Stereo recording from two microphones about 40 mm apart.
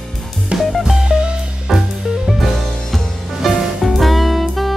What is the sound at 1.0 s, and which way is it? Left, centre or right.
Music, right.